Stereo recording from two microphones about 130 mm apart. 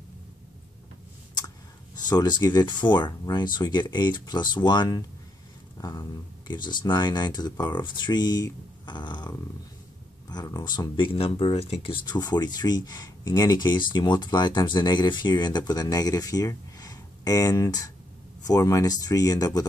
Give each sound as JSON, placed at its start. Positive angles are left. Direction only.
{"t": 2.0, "sound": "speech", "side_deg": 30}
{"t": 10.3, "sound": "speech", "side_deg": 30}